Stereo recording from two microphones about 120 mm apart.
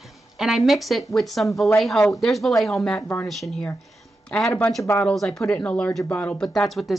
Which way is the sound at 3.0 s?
15° left (ahead or behind).